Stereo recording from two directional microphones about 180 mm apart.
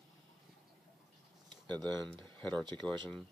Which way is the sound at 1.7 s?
5° left (ahead or behind).